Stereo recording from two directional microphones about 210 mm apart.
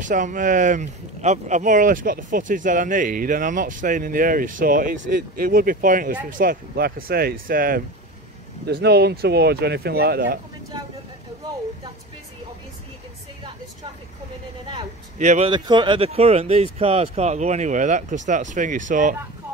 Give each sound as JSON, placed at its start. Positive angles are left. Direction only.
{"t": 0.0, "sound": "speech", "side_deg": -40}
{"t": 15.1, "sound": "speech", "side_deg": -35}